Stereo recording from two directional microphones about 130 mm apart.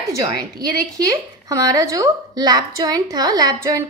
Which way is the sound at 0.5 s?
30° right (ahead or behind).